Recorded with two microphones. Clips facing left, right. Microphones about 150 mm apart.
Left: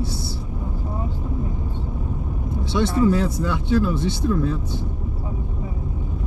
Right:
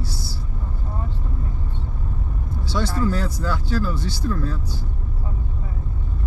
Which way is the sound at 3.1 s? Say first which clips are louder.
Left 4 dB; 25° left (ahead or behind).